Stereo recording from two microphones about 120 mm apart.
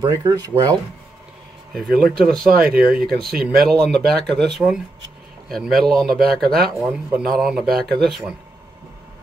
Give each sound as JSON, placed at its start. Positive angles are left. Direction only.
{"t": 0.0, "sound": "speech", "side_deg": -35}
{"t": 1.7, "sound": "speech", "side_deg": 0}
{"t": 6.8, "sound": "speech", "side_deg": -10}